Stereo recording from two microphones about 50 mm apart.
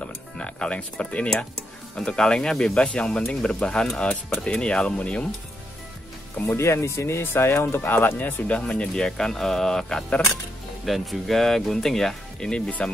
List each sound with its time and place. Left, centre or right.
0.0 s speech: left
6.5 s speech: left
7.8 s speech: left
8.5 s speech: left
10.9 s speech: centre